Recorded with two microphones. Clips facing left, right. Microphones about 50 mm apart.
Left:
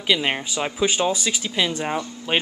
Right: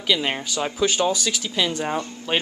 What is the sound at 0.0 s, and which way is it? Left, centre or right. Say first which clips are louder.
Speech: left 1 dB; centre.